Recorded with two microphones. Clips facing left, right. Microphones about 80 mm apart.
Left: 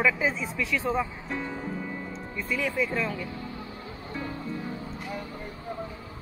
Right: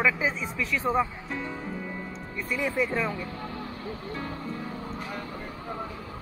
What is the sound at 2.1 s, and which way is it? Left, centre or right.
Music, centre.